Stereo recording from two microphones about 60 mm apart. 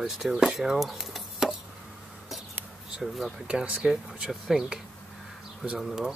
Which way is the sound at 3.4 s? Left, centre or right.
Centre.